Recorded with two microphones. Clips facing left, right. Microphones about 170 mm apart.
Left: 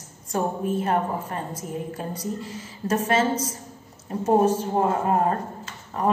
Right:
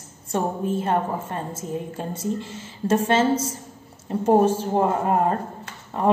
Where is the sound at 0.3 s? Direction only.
30° right (ahead or behind).